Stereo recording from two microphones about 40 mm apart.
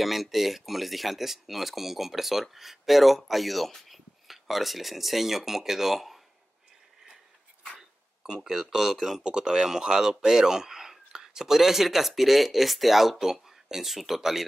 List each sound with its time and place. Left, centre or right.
0.0 s speech: centre
8.5 s speech: centre
9.2 s speech: centre